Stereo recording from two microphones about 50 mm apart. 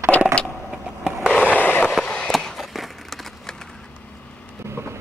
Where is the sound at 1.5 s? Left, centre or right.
Left.